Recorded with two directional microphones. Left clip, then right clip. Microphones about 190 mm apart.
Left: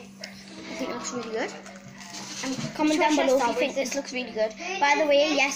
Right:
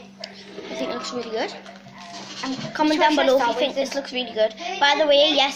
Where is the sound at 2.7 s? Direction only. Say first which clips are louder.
Right 4 dB; centre (ahead or behind).